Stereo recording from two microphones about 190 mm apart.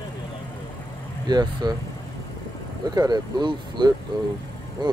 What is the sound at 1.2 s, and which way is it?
Speech, 20° right (ahead or behind).